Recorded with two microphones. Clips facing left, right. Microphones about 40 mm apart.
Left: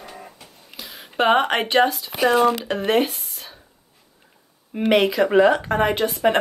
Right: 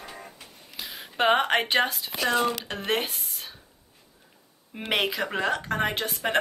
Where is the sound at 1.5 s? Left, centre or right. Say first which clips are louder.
Left 5 dB; centre.